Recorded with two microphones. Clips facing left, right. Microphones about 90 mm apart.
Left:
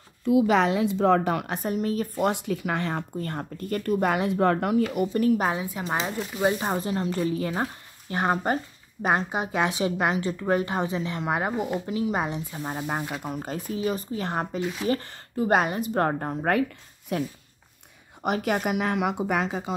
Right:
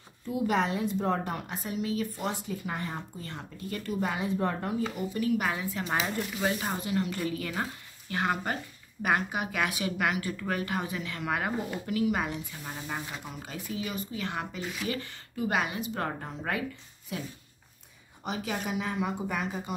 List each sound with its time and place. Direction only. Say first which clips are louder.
0.2 s a woman's voice: left 8 dB; 90° left
1.6 s speech: left 5 dB; 45° left (ahead or behind); by 5.0 s 75° left (ahead or behind)
5.1 s a woman's voice: left 5 dB; 45° left (ahead or behind)
5.5 s a woman's voice: left 3 dB; 20° left (ahead or behind); by 19.7 s 90° left